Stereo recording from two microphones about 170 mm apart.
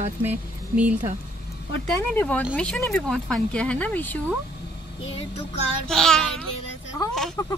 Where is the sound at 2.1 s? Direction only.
10° left (ahead or behind).